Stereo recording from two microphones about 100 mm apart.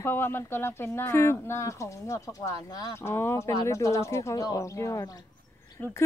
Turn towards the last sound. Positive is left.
turn(degrees=25)  # may be behind; listen again after turning